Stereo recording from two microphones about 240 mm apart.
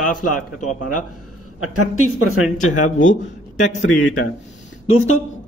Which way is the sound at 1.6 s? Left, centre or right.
Left.